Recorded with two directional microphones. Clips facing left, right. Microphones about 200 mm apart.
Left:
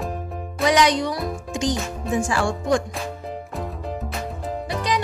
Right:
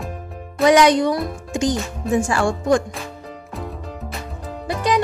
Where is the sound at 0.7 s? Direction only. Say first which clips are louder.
Right 5 dB; 50° right (ahead or behind).